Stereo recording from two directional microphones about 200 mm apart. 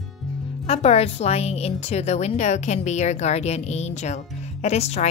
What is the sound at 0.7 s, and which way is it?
Speech, 30° left (ahead or behind).